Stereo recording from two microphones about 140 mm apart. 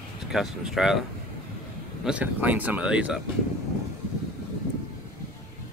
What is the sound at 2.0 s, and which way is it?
Speech, 10° right (ahead or behind).